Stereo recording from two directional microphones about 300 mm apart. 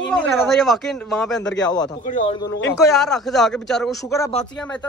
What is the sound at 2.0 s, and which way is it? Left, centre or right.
Speech, left.